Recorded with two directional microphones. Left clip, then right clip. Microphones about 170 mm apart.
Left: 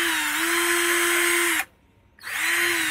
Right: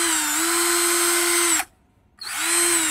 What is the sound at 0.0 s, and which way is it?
Drill, 50° right (ahead or behind).